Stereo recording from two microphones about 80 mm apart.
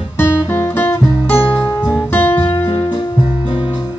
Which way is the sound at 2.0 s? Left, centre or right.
Left.